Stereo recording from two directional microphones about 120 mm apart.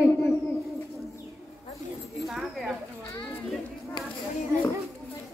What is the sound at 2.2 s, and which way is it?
Speech, centre (ahead or behind).